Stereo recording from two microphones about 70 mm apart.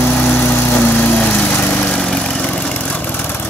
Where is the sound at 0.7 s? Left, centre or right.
Centre.